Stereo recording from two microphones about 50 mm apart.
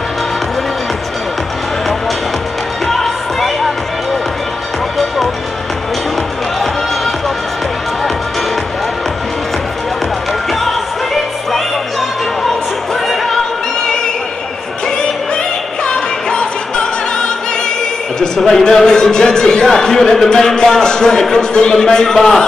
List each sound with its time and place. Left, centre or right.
2.9 s music: centre
16.3 s music: centre
18.2 s speech: centre